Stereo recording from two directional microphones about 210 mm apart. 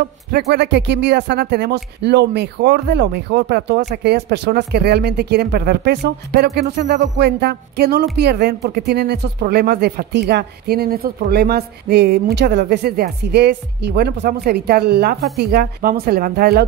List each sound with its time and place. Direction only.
0.3 s speech: 50° right (ahead or behind)